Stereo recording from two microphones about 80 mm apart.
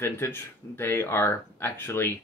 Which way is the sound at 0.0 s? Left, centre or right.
Left.